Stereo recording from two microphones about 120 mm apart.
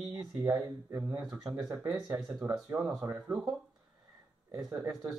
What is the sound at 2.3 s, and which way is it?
Speech, 30° right (ahead or behind).